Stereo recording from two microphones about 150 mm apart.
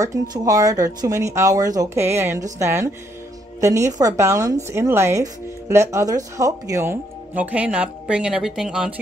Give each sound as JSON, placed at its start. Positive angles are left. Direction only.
{"t": 0.0, "sound": "speech", "side_deg": -25}